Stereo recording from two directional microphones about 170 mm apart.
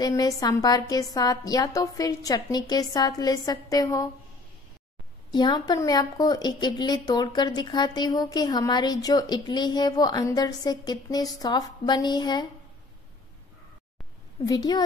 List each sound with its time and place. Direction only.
0.0 s a woman's voice: 20° left (ahead or behind)
5.3 s a woman's voice: 25° left (ahead or behind)
14.4 s a woman's voice: 20° left (ahead or behind)